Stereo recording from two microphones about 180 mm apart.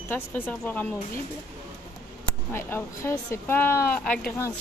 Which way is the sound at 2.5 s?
15° left (ahead or behind).